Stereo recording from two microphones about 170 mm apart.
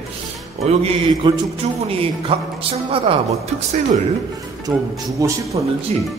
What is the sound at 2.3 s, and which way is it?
Speech, 30° right (ahead or behind).